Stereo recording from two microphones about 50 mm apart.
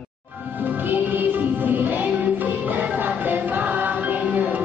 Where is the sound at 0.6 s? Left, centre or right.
Right.